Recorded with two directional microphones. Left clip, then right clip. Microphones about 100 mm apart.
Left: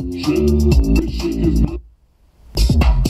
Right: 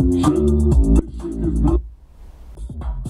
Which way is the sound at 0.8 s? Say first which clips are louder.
Left 3 dB; 60° left (ahead or behind).